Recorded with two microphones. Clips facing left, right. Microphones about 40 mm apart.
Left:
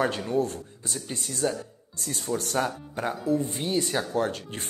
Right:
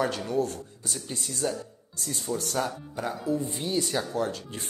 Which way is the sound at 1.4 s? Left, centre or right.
Left.